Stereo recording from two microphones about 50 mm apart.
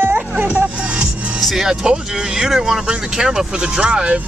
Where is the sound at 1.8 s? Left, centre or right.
Centre.